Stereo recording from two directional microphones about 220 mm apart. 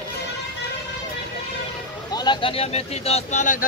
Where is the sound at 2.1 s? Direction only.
20° left (ahead or behind).